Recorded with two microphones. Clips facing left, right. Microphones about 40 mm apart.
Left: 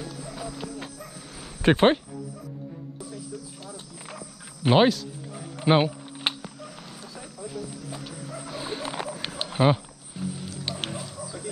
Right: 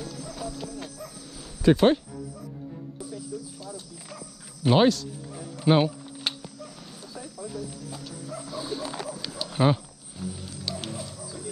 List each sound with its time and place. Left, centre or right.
0.0 s clip-clop: centre
1.4 s cricket: left
3.6 s cricket: left
4.6 s a sound: centre
7.2 s cricket: left
8.5 s a sound: left
9.5 s music: centre